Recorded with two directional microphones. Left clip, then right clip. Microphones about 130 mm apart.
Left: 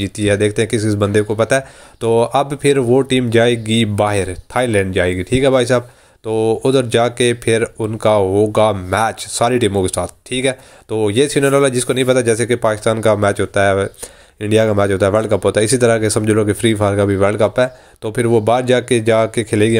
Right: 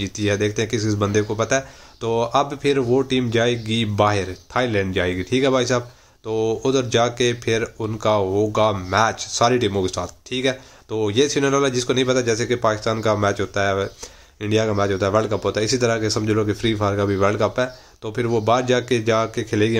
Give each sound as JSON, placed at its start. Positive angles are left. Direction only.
{"t": 0.0, "sound": "speech", "side_deg": 35}